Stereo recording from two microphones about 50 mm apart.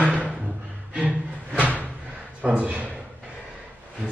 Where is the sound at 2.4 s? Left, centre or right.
Right.